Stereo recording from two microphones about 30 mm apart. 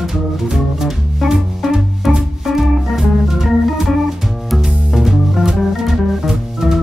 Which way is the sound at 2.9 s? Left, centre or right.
Centre.